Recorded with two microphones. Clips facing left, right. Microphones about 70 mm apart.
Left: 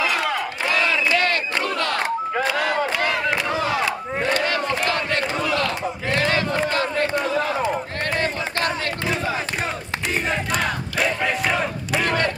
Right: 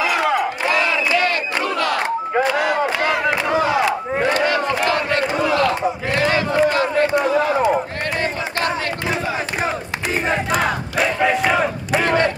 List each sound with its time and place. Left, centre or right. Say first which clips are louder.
0.0 s crowd: right 4 dB; centre
0.7 s battle cry: even; right
9.1 s battle cry: right 2 dB; centre; by 12.3 s right